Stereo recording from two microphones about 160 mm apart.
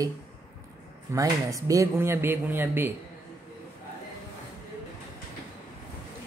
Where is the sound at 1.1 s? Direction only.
20° right (ahead or behind).